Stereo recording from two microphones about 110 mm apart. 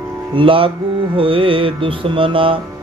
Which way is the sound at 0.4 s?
55° right (ahead or behind).